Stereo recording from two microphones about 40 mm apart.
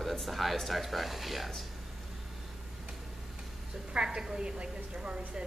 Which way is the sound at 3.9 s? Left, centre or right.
Right.